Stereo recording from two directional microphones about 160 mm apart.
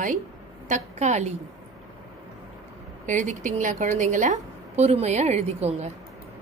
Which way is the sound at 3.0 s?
50° right (ahead or behind).